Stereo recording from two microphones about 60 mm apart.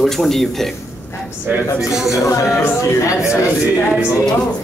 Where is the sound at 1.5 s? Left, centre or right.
Right.